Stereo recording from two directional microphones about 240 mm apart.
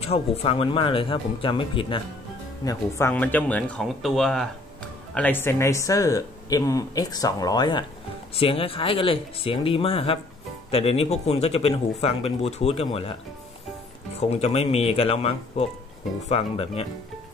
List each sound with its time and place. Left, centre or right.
0.0 s speech: left
14.3 s speech: left